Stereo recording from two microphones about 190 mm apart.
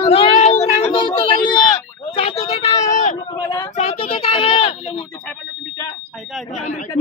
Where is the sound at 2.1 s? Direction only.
35° left (ahead or behind).